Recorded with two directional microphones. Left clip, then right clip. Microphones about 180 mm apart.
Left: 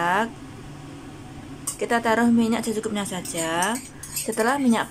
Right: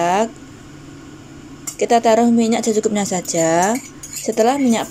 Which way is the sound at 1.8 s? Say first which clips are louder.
Right 8 dB; 15° right (ahead or behind).